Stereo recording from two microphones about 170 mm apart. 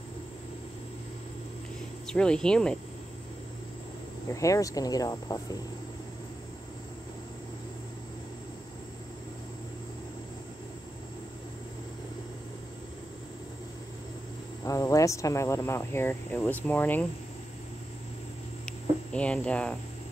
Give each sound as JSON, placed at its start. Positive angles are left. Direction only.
{"t": 2.0, "sound": "speech", "side_deg": 5}
{"t": 4.3, "sound": "speech", "side_deg": 20}
{"t": 14.6, "sound": "speech", "side_deg": 20}
{"t": 18.7, "sound": "a sound", "side_deg": 5}